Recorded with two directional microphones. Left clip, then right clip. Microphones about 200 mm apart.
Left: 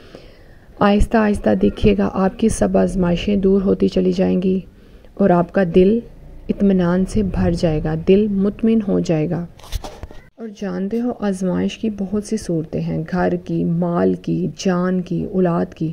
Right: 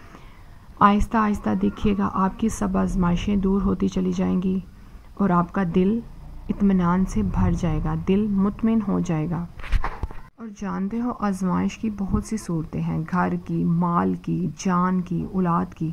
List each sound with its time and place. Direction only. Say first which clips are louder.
0.7 s speech: left 2 dB; 25° left (ahead or behind)
10.4 s speech: left 5 dB; 25° left (ahead or behind)